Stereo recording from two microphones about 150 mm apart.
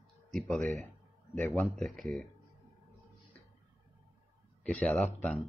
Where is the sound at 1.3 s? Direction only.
15° left (ahead or behind).